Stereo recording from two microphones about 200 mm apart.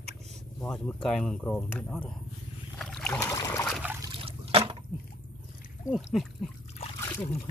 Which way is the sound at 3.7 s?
10° right (ahead or behind).